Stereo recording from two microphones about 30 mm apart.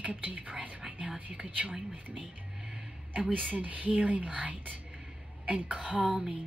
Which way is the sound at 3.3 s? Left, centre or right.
Right.